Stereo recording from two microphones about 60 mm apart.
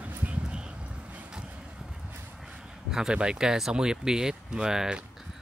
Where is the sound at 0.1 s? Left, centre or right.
Right.